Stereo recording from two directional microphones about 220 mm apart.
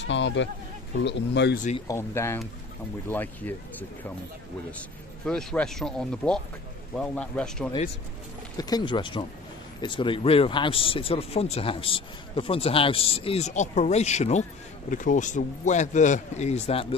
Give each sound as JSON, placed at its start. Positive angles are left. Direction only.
{"t": 0.0, "sound": "speech", "side_deg": 55}
{"t": 1.9, "sound": "speech", "side_deg": 10}
{"t": 5.2, "sound": "speech", "side_deg": 5}
{"t": 8.5, "sound": "a man's voice", "side_deg": 15}